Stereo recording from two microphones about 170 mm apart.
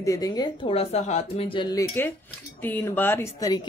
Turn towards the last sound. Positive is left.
turn(degrees=20)  # may be behind; listen again after turning